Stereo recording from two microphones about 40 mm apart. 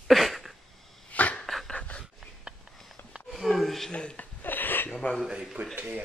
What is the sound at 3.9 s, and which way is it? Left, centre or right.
Speech, left.